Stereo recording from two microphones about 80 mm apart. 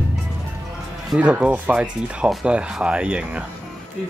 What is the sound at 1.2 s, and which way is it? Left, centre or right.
Speech, centre.